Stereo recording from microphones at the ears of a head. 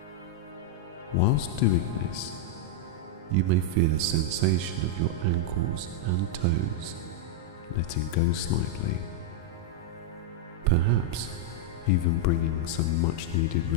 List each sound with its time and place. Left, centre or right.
1.1 s speech: left
3.3 s speech: right
7.7 s speech: left
10.6 s speech: right
11.8 s speech: left